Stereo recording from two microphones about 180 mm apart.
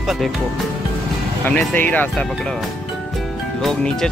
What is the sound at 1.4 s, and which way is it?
Speech, 10° left (ahead or behind).